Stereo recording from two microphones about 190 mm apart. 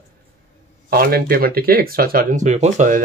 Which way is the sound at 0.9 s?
50° right (ahead or behind).